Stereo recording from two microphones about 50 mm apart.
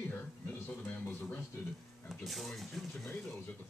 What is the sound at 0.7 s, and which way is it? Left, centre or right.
Speech, left.